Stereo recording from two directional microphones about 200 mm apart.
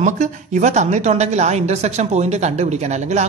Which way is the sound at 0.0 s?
40° right (ahead or behind).